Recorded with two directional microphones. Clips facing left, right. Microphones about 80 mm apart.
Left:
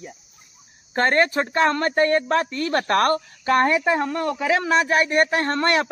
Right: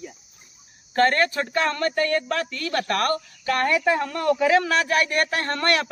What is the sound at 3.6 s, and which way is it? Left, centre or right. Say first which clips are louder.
Speech: left 1 dB; left.